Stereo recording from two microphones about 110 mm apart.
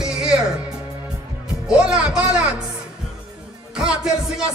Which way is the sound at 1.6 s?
5° right (ahead or behind).